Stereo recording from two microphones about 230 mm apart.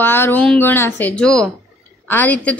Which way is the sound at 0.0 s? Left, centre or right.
Centre.